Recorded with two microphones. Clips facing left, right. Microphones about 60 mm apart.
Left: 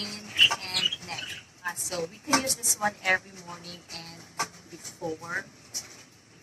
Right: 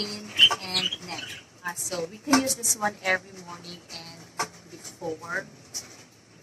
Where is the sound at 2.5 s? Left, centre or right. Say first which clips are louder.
Right 1 dB; right.